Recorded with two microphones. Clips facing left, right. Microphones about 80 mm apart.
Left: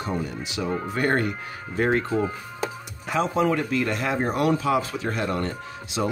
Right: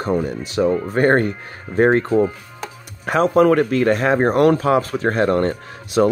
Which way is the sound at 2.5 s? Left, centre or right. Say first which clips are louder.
Left 2 dB; right.